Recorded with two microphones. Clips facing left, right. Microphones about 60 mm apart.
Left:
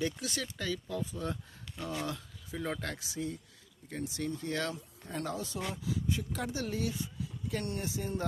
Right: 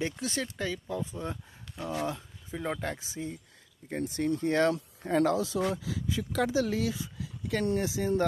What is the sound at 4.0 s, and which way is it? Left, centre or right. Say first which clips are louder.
Speech: right 7 dB; right.